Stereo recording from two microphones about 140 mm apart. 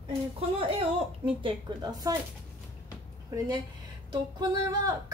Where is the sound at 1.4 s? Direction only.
35° right (ahead or behind).